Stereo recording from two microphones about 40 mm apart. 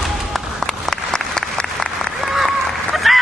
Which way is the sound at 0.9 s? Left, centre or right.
Centre.